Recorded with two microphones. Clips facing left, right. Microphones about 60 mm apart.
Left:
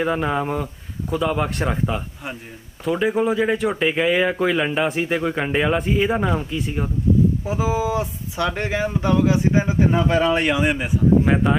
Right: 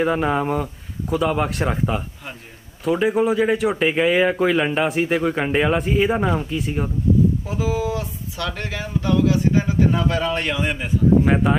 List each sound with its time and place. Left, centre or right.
0.0 s speech: centre
7.4 s speech: centre
11.2 s speech: centre